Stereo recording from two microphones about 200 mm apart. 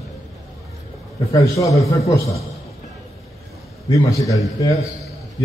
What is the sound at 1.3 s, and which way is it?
Speech, 15° left (ahead or behind).